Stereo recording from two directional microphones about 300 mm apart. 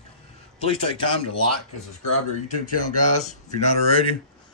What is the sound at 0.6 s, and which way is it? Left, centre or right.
Speech, centre.